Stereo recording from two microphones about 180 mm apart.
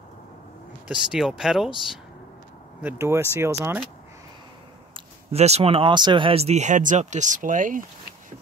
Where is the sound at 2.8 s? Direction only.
10° right (ahead or behind).